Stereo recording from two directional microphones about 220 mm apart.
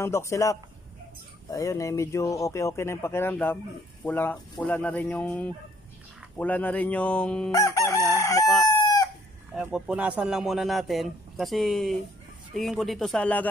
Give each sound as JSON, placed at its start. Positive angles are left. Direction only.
{"t": 0.0, "sound": "a man's voice", "side_deg": 10}
{"t": 7.5, "sound": "chicken", "side_deg": 15}
{"t": 9.6, "sound": "a man's voice", "side_deg": -5}